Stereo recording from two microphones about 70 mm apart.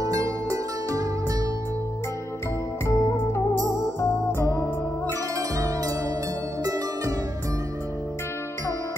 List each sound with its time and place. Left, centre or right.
0.0 s music: right
2.9 s music: left
5.0 s zither: right
6.6 s music: right